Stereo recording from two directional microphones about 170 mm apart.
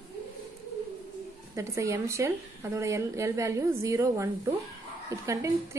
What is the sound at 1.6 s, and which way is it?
A woman's voice, 15° right (ahead or behind).